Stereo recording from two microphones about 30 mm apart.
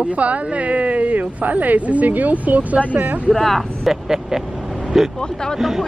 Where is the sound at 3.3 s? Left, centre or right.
Centre.